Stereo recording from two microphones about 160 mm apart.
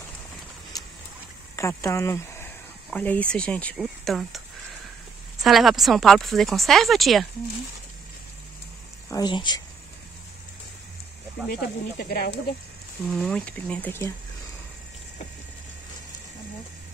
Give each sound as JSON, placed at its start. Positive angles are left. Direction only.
{"t": 0.7, "sound": "vehicle", "side_deg": 25}
{"t": 1.6, "sound": "speech", "side_deg": 20}
{"t": 5.4, "sound": "speech", "side_deg": 0}
{"t": 9.1, "sound": "speech", "side_deg": 30}
{"t": 11.4, "sound": "speech", "side_deg": 75}
{"t": 13.1, "sound": "speech", "side_deg": 5}